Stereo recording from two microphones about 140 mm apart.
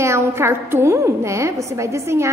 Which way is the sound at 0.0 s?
20° right (ahead or behind).